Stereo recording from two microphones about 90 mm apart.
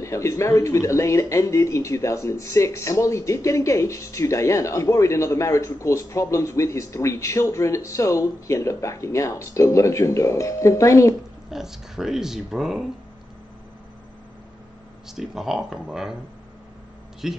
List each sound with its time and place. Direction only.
0.0 s speech: 35° left (ahead or behind)
11.5 s speech: 5° right (ahead or behind)
15.0 s speech: 5° right (ahead or behind)
17.2 s speech: 5° right (ahead or behind)